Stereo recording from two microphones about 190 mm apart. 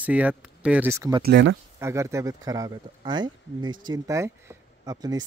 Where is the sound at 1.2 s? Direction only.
65° right (ahead or behind).